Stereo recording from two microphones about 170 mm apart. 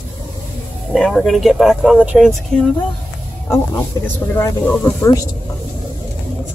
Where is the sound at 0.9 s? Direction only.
Centre (ahead or behind).